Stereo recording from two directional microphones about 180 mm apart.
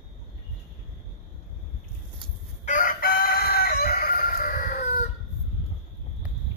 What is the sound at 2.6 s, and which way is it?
Chicken, 50° left (ahead or behind).